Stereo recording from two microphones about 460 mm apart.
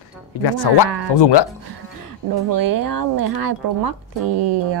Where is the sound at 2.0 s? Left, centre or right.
Right.